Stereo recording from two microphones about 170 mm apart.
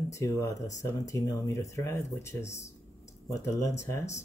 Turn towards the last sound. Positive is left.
turn(degrees=15)  # may be behind; listen again after turning